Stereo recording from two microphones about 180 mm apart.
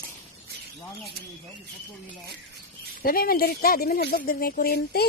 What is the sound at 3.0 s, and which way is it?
Speech, 55° left (ahead or behind).